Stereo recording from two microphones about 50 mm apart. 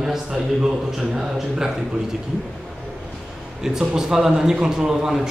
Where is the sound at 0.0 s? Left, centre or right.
Centre.